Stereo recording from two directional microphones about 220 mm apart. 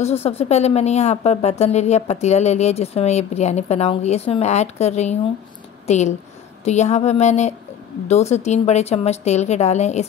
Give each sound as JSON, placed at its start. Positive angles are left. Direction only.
{"t": 0.0, "sound": "speech", "side_deg": 30}